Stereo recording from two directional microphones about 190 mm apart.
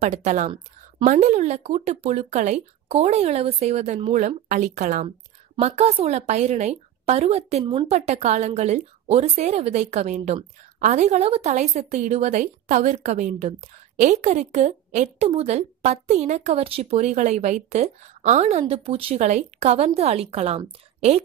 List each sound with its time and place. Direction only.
0.0 s a woman's voice: 35° right (ahead or behind)